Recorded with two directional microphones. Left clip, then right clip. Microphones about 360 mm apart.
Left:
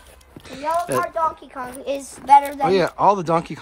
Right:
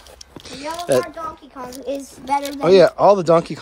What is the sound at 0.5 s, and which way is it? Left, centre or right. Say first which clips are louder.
Speech: left 2 dB; centre.